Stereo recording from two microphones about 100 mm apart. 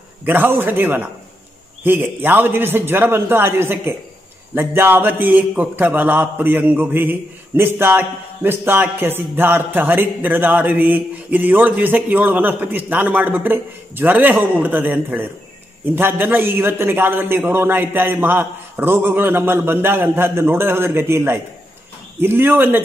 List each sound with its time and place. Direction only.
0.2 s a man's voice: 20° right (ahead or behind)